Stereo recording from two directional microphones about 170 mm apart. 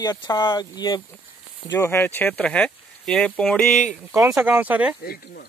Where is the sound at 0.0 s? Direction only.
20° left (ahead or behind); by 4.0 s centre (ahead or behind).